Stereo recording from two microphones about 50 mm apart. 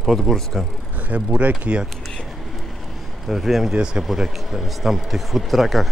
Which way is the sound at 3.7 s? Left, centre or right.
Centre.